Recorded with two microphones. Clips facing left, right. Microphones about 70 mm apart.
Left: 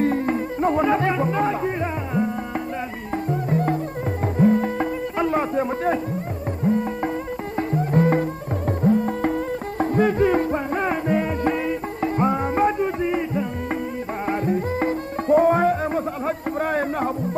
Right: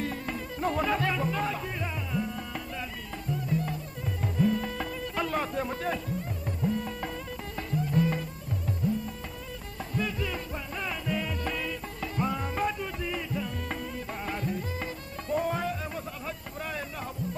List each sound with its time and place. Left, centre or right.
0.0 s music: left
3.3 s music: left